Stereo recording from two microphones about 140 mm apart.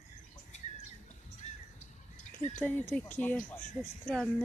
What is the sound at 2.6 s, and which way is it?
Speech, 10° left (ahead or behind).